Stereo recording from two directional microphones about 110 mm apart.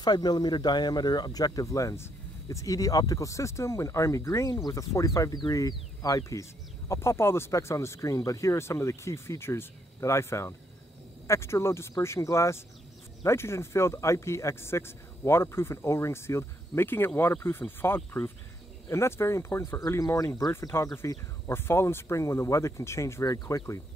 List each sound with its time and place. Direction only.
0.0 s speech: 40° left (ahead or behind)